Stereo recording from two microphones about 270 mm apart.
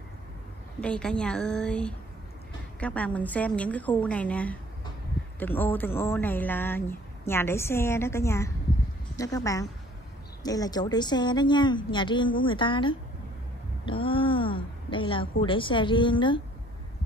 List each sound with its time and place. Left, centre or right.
0.7 s a woman's voice: centre